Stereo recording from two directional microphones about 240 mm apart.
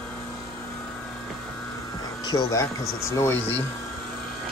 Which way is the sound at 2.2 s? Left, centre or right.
Centre.